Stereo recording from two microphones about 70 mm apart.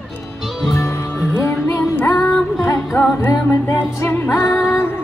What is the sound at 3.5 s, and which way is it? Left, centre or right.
Music, left.